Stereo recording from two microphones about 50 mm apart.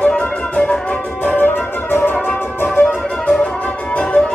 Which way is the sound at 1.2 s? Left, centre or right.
Left.